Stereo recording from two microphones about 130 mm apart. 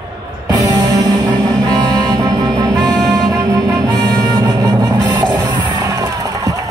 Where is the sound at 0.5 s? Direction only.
25° right (ahead or behind).